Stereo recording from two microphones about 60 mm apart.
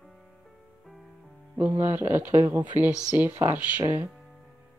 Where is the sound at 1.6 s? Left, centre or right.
Right.